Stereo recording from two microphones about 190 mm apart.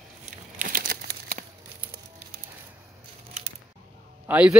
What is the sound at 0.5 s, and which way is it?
Crumpling, 45° right (ahead or behind).